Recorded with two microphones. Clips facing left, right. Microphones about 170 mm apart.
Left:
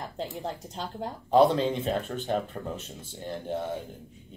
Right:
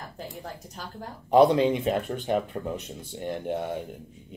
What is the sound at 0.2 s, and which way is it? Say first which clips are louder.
Speech: left 5 dB; 25° left (ahead or behind).